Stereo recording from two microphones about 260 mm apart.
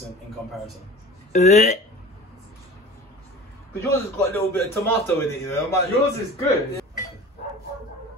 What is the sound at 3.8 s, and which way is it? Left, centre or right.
A man's voice, centre.